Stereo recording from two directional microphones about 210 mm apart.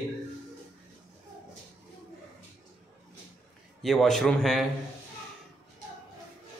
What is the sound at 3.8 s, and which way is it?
Speech, centre (ahead or behind).